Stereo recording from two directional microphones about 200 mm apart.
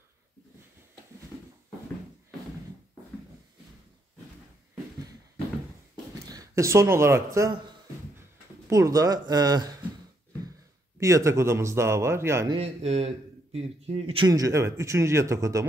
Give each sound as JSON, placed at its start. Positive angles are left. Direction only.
{"t": 6.2, "sound": "speech", "side_deg": -20}
{"t": 8.6, "sound": "speech", "side_deg": -15}
{"t": 11.0, "sound": "a man's voice", "side_deg": -15}
{"t": 12.5, "sound": "a man's voice", "side_deg": -30}